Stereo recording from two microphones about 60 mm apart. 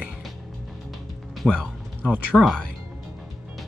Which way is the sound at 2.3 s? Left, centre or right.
Centre.